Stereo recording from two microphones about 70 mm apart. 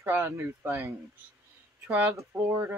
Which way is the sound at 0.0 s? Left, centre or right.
Right.